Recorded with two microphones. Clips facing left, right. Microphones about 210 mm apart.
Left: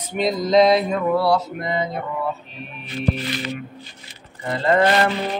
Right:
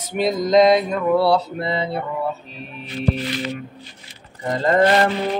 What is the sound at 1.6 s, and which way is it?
Mantra, 35° right (ahead or behind).